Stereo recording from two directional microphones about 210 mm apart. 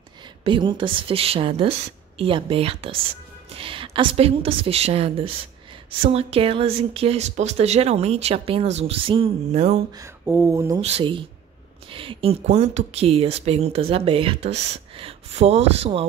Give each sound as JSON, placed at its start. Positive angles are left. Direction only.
{"t": 0.4, "sound": "speech", "side_deg": -25}
{"t": 9.9, "sound": "speech", "side_deg": -10}
{"t": 10.8, "sound": "speech", "side_deg": -30}